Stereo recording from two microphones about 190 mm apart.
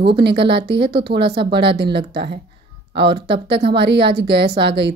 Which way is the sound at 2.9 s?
60° right (ahead or behind).